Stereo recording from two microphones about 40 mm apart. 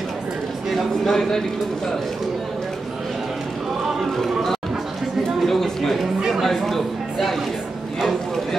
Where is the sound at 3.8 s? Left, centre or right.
Centre.